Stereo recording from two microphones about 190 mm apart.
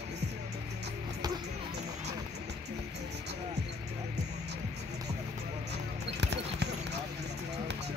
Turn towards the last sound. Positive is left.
turn(degrees=-60)  # may be behind; listen again after turning